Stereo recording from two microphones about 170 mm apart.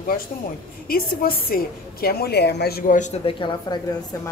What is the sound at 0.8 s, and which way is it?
A woman's voice, 60° left (ahead or behind).